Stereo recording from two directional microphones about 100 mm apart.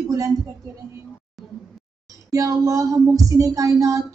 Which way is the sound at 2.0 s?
35° right (ahead or behind).